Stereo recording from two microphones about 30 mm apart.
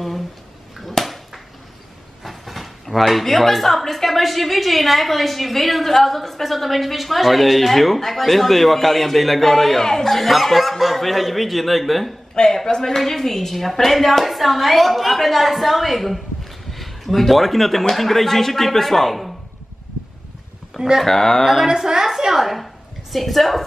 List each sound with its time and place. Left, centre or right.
0.7 s a sound: centre
2.2 s speech: centre
10.1 s speech: centre
12.6 s a woman's voice: centre
12.9 s speech: centre
21.0 s speech: centre
21.6 s a woman's voice: right
22.3 s a woman's voice: centre